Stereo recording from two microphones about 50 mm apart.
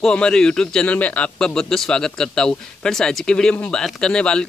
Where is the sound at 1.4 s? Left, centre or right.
Centre.